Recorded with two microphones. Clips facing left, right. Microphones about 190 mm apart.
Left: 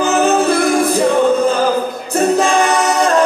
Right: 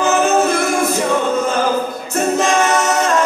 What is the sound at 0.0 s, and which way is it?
Music, 35° left (ahead or behind).